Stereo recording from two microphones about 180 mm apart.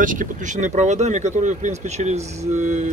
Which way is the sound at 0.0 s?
50° right (ahead or behind).